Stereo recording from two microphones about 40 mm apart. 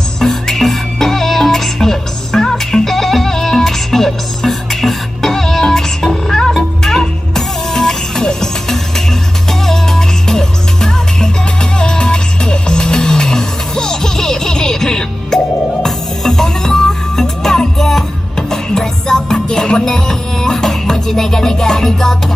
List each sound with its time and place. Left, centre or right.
0.2 s music: centre